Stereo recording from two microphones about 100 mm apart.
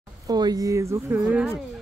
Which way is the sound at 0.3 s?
40° right (ahead or behind).